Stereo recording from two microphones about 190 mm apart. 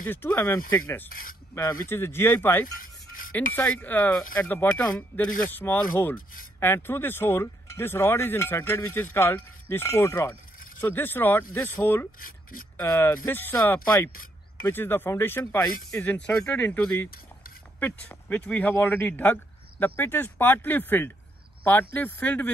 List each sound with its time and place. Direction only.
0.1 s speech: 10° left (ahead or behind)
2.7 s music: 45° left (ahead or behind)
3.3 s speech: 5° left (ahead or behind)
12.2 s speech: 50° left (ahead or behind)
12.7 s speech: 10° left (ahead or behind)